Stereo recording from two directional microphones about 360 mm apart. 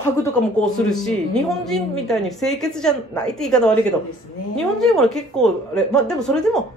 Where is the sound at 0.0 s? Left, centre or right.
Centre.